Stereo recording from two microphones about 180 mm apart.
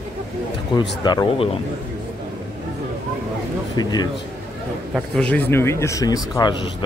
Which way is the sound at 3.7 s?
25° left (ahead or behind).